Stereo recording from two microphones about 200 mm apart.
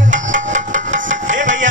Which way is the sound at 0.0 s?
40° right (ahead or behind).